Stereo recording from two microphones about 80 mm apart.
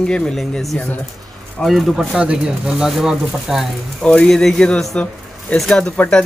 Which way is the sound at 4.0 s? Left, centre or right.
Centre.